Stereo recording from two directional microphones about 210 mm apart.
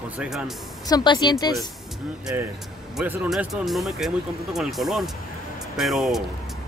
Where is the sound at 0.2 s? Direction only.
5° right (ahead or behind).